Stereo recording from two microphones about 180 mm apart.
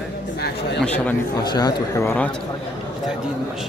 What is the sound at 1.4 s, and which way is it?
Speech, 25° left (ahead or behind).